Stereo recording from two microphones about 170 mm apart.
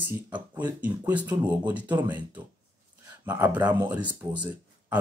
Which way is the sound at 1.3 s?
25° right (ahead or behind).